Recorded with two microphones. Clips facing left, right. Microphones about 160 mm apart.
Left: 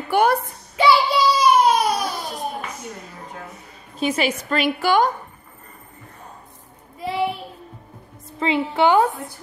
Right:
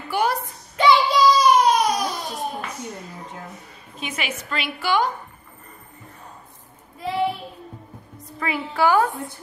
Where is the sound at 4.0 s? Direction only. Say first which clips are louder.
Left 9 dB; 35° left (ahead or behind).